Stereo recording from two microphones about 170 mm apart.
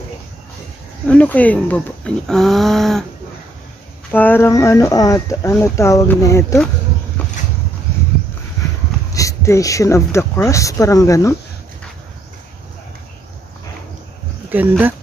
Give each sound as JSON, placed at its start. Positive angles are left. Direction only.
{"t": 1.0, "sound": "speech", "side_deg": 10}
{"t": 4.1, "sound": "speech", "side_deg": 10}
{"t": 7.2, "sound": "a sound", "side_deg": 10}
{"t": 9.1, "sound": "speech", "side_deg": 20}
{"t": 14.5, "sound": "speech", "side_deg": -10}